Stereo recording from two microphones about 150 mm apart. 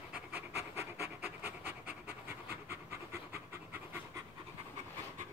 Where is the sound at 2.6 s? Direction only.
15° right (ahead or behind).